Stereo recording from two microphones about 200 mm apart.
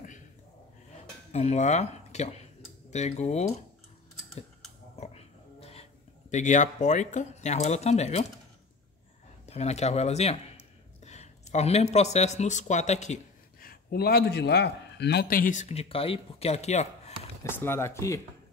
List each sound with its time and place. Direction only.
1.3 s speech: 35° left (ahead or behind)
4.9 s a sound: 30° left (ahead or behind)
6.3 s speech: 35° left (ahead or behind)
9.5 s speech: 35° left (ahead or behind)
17.4 s speech: 10° left (ahead or behind)